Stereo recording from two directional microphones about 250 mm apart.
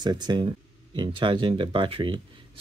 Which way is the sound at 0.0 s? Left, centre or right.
Centre.